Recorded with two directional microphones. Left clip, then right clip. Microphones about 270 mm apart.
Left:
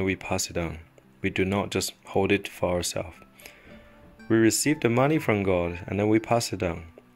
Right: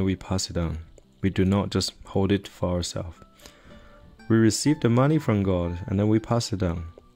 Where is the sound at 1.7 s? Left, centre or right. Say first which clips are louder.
Right 1 dB; right.